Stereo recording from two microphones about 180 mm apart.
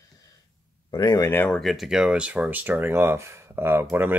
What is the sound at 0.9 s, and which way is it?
Speech, 20° left (ahead or behind).